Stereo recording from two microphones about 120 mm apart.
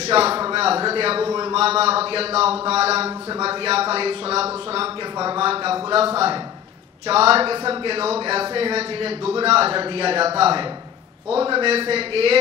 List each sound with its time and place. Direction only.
0.0 s a sound: 55° right (ahead or behind)
1.5 s speech: 55° right (ahead or behind)
7.1 s speech: 55° right (ahead or behind)